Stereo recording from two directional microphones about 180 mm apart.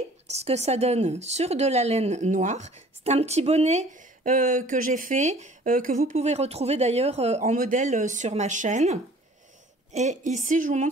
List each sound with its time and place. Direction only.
0.3 s speech: 35° right (ahead or behind)